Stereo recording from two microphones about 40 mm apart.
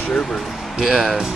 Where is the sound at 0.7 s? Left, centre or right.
Centre.